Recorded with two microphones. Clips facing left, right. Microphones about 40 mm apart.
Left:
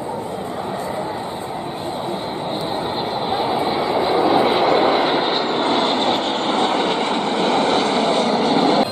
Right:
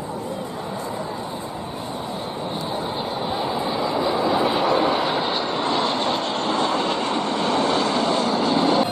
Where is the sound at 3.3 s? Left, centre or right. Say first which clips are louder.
Left 6 dB; left.